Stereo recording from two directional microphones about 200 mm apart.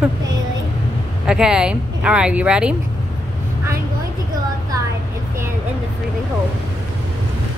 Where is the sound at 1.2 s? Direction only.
5° right (ahead or behind).